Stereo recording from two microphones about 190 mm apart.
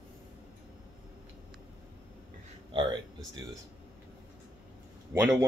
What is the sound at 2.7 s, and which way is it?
Speech, 25° right (ahead or behind).